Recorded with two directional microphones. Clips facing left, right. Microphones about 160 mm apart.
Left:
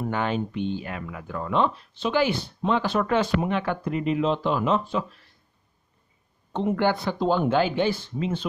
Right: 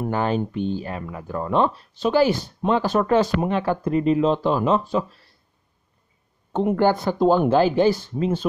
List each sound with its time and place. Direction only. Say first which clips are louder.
0.1 s speech: right 5 dB; 40° right (ahead or behind)
6.7 s speech: right 4 dB; 45° right (ahead or behind)